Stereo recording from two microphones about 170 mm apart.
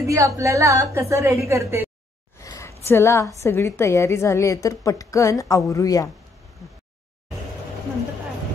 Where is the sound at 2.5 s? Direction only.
15° left (ahead or behind).